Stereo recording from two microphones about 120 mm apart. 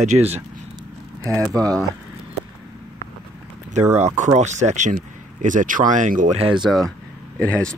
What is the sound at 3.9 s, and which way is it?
Speech, 85° right.